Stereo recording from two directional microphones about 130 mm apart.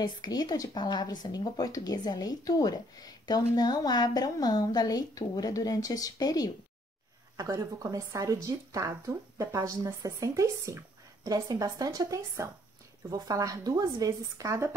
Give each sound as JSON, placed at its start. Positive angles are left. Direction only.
{"t": 0.0, "sound": "speech", "side_deg": 30}
{"t": 7.3, "sound": "speech", "side_deg": -25}